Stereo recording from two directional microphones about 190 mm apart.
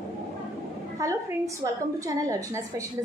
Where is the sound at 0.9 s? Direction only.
15° right (ahead or behind).